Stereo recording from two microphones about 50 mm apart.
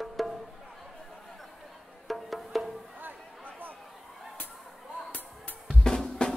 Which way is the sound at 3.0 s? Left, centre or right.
Right.